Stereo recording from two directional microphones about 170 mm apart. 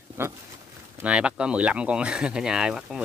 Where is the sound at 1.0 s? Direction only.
5° right (ahead or behind).